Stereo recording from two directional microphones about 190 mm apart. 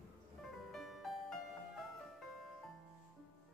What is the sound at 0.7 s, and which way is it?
Music, centre (ahead or behind).